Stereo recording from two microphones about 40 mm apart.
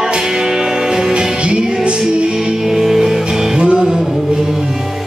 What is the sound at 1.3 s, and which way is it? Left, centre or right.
Music, right.